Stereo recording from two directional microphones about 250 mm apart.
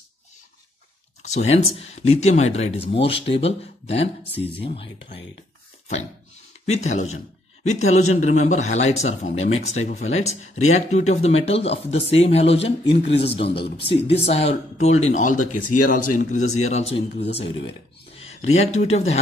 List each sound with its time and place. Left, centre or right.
1.2 s speech: left
6.7 s speech: left